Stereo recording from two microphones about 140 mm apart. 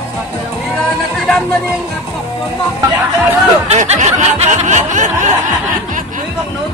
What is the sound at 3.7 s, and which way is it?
Snicker, 55° right (ahead or behind).